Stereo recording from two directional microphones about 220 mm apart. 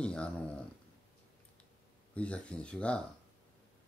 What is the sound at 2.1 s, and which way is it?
Speech, 5° left (ahead or behind).